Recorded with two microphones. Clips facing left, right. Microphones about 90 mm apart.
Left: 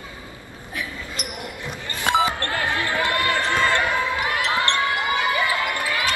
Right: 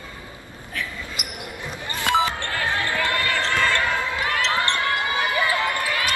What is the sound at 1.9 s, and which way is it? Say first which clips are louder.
Basketball bounce: left 1 dB; 20° left (ahead or behind).